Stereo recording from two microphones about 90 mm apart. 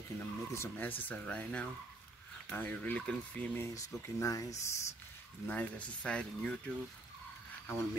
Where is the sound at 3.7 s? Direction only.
40° left (ahead or behind).